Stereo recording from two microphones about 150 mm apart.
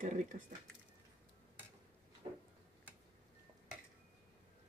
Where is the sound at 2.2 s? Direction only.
35° right (ahead or behind).